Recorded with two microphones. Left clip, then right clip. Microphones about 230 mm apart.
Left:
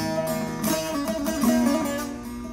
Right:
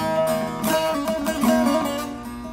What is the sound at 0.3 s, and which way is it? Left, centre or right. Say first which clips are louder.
Music: right 4 dB; centre.